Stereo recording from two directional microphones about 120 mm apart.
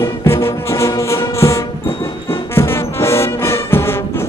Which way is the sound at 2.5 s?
20° left (ahead or behind).